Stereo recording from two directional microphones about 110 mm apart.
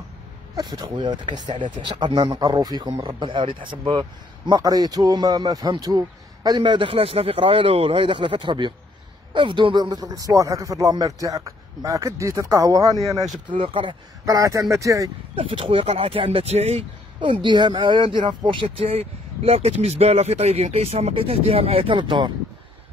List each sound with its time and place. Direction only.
0.6 s a man's voice: 40° right (ahead or behind)
13.5 s a man's voice: 50° right (ahead or behind)
14.2 s speech: 30° right (ahead or behind)
15.3 s speech: 55° right (ahead or behind); by 16.8 s 75° right (ahead or behind)
17.2 s speech: 45° right (ahead or behind)